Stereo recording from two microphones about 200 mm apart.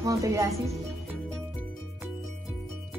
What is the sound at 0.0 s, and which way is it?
Speech, 15° right (ahead or behind).